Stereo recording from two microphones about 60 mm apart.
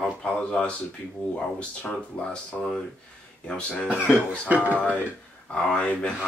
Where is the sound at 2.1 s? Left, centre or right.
Left.